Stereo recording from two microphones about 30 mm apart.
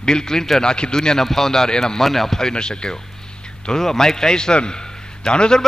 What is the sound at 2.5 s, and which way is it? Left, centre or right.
Speech, left.